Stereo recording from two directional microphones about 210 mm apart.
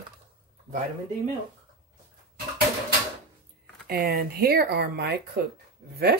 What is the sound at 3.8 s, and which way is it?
Speech, 45° right (ahead or behind).